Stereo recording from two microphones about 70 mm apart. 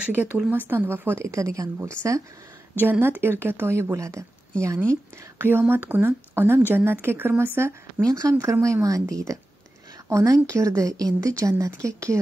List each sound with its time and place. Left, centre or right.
0.0 s speech: right
1.2 s a woman's voice: right
2.8 s speech: right
3.9 s a woman's voice: right
5.4 s speech: right
8.0 s a woman's voice: right